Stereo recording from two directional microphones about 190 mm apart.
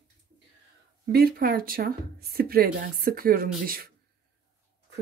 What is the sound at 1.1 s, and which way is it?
Speech, 55° right (ahead or behind).